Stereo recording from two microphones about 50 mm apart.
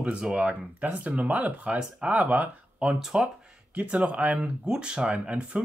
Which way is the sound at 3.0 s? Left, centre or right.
Centre.